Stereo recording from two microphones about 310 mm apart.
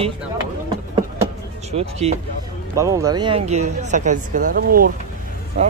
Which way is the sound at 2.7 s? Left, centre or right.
Centre.